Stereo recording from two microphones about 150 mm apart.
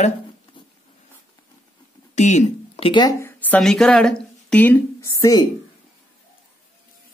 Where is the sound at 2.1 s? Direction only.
50° left (ahead or behind).